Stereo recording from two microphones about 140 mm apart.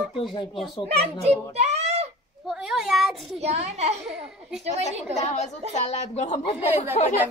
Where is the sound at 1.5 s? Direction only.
50° right (ahead or behind).